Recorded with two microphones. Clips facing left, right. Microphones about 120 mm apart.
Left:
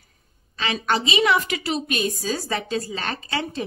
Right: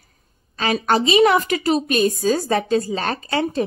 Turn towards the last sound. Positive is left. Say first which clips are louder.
# right 7 dB
turn(degrees=-45)  # may be behind; listen again after turning